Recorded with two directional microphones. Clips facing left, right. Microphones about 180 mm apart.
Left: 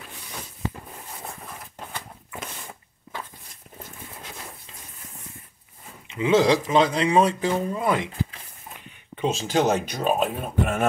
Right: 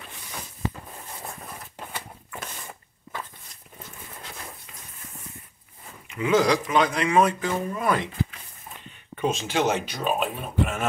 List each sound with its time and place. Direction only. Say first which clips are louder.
6.0 s speech: left 2 dB; 25° left (ahead or behind)
9.2 s speech: left 2 dB; 35° left (ahead or behind); by 10.9 s 55° left (ahead or behind)